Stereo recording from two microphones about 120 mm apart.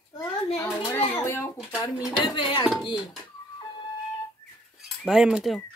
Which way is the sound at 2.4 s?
45° left (ahead or behind).